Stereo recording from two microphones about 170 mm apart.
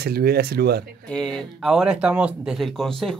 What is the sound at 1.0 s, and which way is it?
Speech, 5° left (ahead or behind).